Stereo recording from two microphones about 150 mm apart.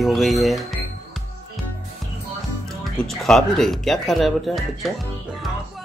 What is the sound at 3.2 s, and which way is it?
Speech, 5° left (ahead or behind).